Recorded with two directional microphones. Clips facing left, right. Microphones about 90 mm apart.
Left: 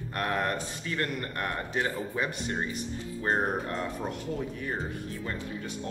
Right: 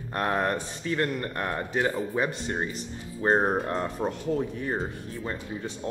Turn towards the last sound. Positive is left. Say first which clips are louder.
# right 2 dB
turn(degrees=-25)  # may be behind; listen again after turning